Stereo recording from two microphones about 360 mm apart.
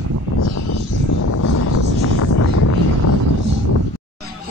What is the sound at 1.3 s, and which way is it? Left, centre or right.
Vehicle, left.